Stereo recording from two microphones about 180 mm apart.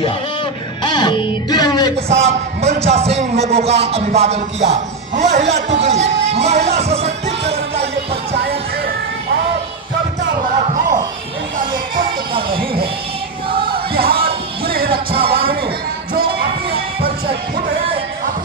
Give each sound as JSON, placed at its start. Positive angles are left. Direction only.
{"t": 0.8, "sound": "music", "side_deg": 25}
{"t": 2.0, "sound": "a man's voice", "side_deg": -35}
{"t": 6.2, "sound": "music", "side_deg": -35}
{"t": 8.4, "sound": "music", "side_deg": -60}
{"t": 12.4, "sound": "music", "side_deg": -30}
{"t": 13.9, "sound": "music", "side_deg": -60}